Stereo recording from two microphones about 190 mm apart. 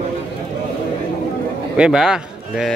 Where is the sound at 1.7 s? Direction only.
5° right (ahead or behind).